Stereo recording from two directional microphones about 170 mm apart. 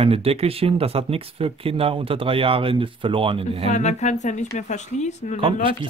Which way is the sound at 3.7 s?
40° left (ahead or behind).